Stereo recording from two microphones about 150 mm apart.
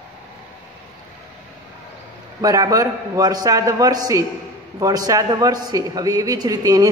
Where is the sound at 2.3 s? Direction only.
25° right (ahead or behind).